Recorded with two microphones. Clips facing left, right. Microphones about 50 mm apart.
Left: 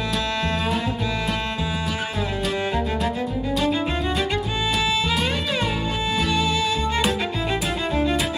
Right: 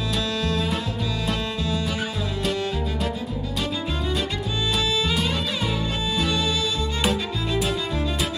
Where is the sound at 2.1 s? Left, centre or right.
Left.